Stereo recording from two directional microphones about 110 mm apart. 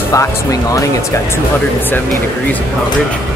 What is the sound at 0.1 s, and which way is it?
Speech, 30° left (ahead or behind).